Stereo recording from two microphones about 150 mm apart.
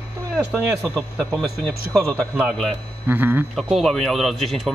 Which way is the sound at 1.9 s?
15° right (ahead or behind).